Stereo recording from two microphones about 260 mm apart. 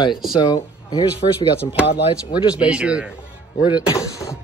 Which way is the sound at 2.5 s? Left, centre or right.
Centre.